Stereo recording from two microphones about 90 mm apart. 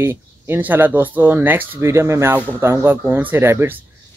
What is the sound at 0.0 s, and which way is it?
Speech, 25° right (ahead or behind).